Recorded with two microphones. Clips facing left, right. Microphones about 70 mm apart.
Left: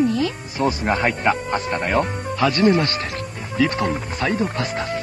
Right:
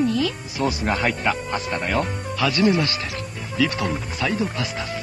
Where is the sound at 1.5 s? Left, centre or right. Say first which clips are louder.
Left 3 dB; left.